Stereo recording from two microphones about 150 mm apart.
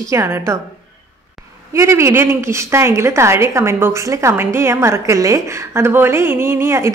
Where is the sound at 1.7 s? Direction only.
15° right (ahead or behind).